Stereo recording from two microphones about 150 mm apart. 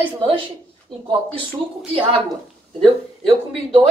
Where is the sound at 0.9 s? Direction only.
35° right (ahead or behind).